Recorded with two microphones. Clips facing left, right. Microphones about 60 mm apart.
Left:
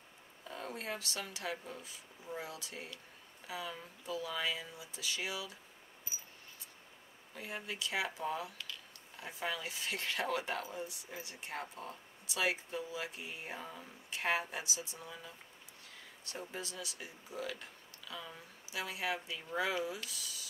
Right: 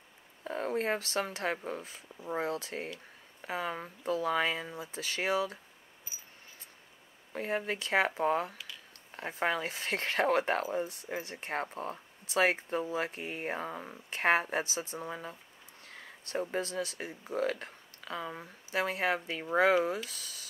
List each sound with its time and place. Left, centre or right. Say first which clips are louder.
0.4 s speech: right 11 dB; right
7.3 s speech: right 9 dB; right
8.5 s a sound: right 1 dB; centre
9.1 s speech: right 8 dB; right